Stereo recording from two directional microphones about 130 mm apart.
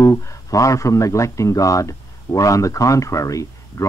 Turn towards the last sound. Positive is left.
turn(degrees=25)  # may be behind; listen again after turning